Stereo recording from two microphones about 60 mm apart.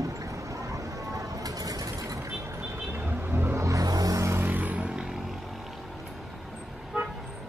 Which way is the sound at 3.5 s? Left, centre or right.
Right.